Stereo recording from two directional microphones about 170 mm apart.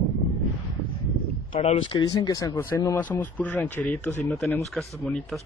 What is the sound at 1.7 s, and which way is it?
Speech, 30° left (ahead or behind).